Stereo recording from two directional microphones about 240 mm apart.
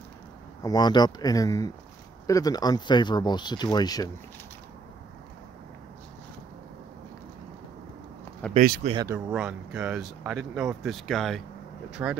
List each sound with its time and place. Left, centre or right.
0.7 s speech: centre
8.5 s speech: right
8.9 s speech: centre
9.3 s speech: centre